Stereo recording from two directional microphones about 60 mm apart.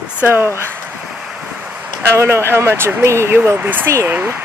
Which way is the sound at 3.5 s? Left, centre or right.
Right.